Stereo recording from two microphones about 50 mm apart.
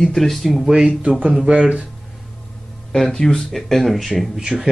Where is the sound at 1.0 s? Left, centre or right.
Right.